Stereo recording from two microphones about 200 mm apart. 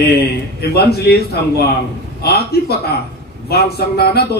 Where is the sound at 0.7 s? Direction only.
55° left (ahead or behind).